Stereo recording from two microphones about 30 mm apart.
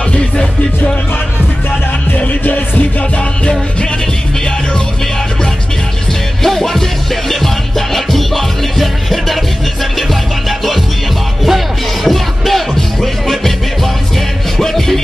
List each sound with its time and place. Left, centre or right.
2.4 s music: left
6.4 s music: centre
11.4 s music: centre
14.6 s music: centre